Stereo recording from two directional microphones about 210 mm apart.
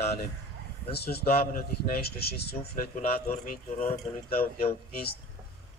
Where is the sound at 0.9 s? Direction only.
50° left (ahead or behind).